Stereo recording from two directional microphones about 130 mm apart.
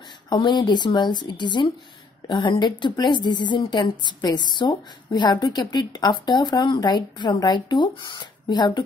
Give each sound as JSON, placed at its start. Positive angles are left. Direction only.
{"t": 0.3, "sound": "a woman's voice", "side_deg": 35}